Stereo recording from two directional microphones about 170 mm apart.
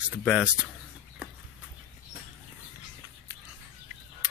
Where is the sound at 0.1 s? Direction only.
5° right (ahead or behind).